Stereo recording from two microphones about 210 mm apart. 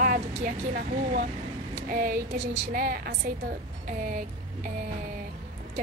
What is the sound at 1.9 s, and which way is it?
A woman's voice, 45° right (ahead or behind).